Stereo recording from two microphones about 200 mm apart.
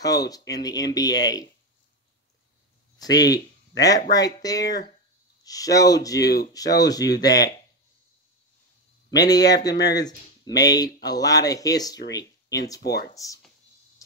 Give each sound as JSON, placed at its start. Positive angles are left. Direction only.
{"t": 0.0, "sound": "speech", "side_deg": 20}
{"t": 3.0, "sound": "speech", "side_deg": 20}
{"t": 6.1, "sound": "speech", "side_deg": 55}
{"t": 6.5, "sound": "speech", "side_deg": 20}
{"t": 9.1, "sound": "speech", "side_deg": 20}
{"t": 13.1, "sound": "speech", "side_deg": 15}